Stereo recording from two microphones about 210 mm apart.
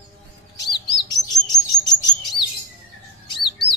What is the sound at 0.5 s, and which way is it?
Chirp, 20° left (ahead or behind).